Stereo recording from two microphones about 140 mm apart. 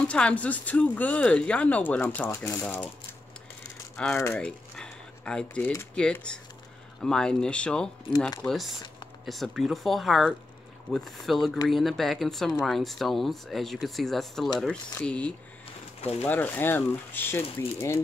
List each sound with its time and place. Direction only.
0.1 s speech: 10° left (ahead or behind)
3.9 s rattle: 5° left (ahead or behind)
4.2 s speech: 10° left (ahead or behind)
16.0 s speech: 50° left (ahead or behind)
16.3 s speech: 10° left (ahead or behind)